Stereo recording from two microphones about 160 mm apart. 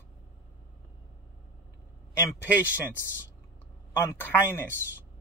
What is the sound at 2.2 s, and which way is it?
A man's voice, 15° left (ahead or behind).